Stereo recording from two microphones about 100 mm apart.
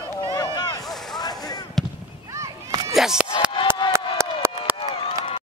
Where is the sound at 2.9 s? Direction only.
5° right (ahead or behind).